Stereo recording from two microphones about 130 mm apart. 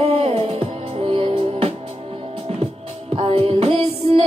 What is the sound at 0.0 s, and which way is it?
Music, 50° right (ahead or behind).